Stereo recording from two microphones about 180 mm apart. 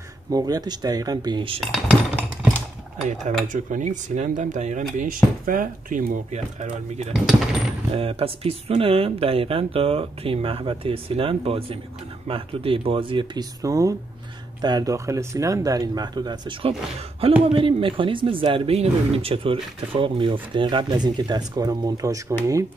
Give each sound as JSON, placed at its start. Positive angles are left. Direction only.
{"t": 0.3, "sound": "speech", "side_deg": -20}
{"t": 1.6, "sound": "a sound", "side_deg": -5}
{"t": 3.5, "sound": "speech", "side_deg": -40}